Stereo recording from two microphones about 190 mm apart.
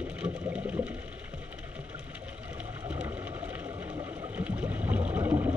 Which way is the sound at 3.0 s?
15° right (ahead or behind).